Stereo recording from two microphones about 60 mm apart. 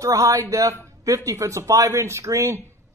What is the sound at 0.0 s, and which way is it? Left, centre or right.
Speech, right.